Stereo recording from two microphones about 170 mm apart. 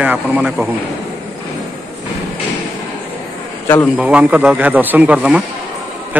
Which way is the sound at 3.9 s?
10° right (ahead or behind).